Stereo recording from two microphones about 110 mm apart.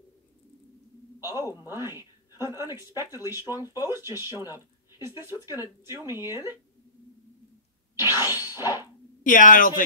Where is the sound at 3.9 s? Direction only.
20° right (ahead or behind).